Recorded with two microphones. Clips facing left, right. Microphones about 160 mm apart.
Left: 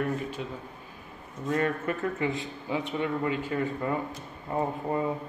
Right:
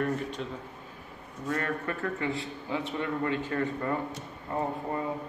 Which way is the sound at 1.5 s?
20° left (ahead or behind).